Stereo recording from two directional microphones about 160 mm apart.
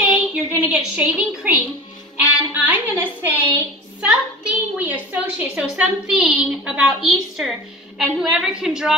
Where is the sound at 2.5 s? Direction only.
10° right (ahead or behind).